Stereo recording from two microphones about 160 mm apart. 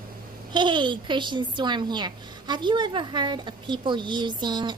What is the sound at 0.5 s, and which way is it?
A woman's voice, 30° right (ahead or behind).